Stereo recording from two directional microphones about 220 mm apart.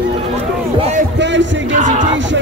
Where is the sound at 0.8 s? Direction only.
30° right (ahead or behind).